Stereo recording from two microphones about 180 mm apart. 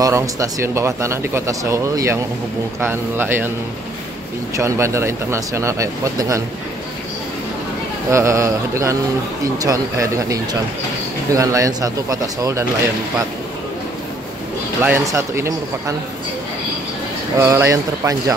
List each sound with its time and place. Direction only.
0.0 s speech: 15° right (ahead or behind)
4.6 s speech: 15° right (ahead or behind)
8.1 s speech: 15° right (ahead or behind)
14.8 s speech: 15° right (ahead or behind)
17.4 s speech: 15° right (ahead or behind)